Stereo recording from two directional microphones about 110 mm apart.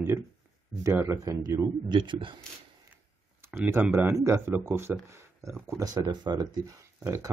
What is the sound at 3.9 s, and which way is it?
Speech, 25° right (ahead or behind).